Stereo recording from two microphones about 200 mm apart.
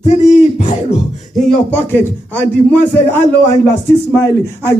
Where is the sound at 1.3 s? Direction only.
10° left (ahead or behind).